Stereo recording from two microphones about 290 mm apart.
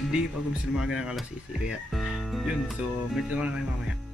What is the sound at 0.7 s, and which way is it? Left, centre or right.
Speech, centre.